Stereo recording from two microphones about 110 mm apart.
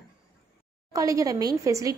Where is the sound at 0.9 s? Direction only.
30° right (ahead or behind).